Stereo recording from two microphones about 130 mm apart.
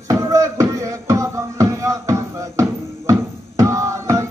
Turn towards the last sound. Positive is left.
turn(degrees=-25)  # may be behind; listen again after turning